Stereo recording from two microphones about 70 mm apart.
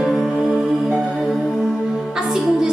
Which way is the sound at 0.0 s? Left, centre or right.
Centre.